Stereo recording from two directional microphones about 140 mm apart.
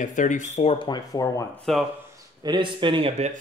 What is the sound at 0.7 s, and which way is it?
Speech, 35° left (ahead or behind).